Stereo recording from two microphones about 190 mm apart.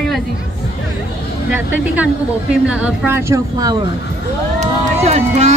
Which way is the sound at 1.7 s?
10° right (ahead or behind).